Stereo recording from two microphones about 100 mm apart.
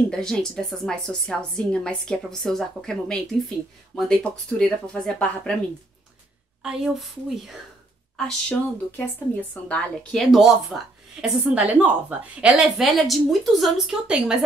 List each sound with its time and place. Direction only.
0.1 s a woman's voice: 5° left (ahead or behind)
6.6 s a woman's voice: 5° right (ahead or behind)
8.5 s a woman's voice: 15° left (ahead or behind)
10.1 s a woman's voice: centre (ahead or behind)